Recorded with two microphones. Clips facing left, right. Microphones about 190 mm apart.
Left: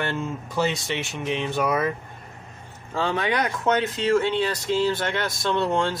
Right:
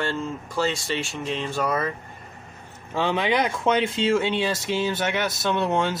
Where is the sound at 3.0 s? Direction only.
20° right (ahead or behind).